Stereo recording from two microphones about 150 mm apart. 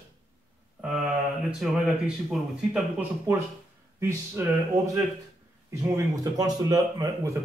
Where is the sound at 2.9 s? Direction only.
15° right (ahead or behind).